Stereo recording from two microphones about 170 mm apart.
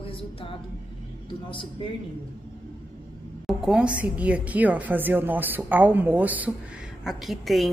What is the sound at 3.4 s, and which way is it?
A woman's voice, 5° right (ahead or behind).